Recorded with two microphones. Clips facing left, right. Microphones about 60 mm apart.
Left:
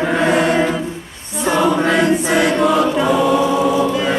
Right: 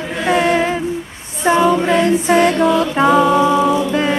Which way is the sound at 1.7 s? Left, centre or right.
Left.